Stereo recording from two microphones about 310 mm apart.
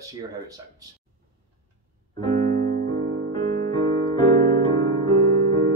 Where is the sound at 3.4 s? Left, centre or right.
Right.